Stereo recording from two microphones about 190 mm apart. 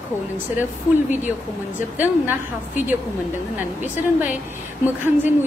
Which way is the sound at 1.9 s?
10° right (ahead or behind).